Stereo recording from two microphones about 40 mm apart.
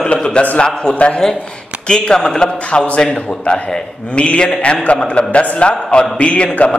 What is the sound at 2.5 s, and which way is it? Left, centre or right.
A man's voice, left.